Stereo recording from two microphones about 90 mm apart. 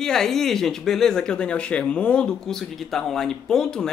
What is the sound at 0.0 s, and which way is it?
Speech, 5° left (ahead or behind).